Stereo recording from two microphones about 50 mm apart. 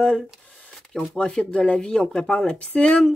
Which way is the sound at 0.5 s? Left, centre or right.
Centre.